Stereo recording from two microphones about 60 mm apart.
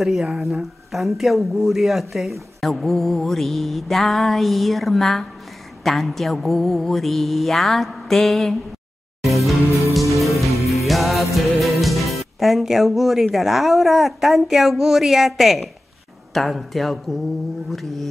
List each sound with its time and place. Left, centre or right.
0.0 s speech: centre
9.2 s music: centre
9.7 s music: left
10.2 s music: centre
11.3 s speech: centre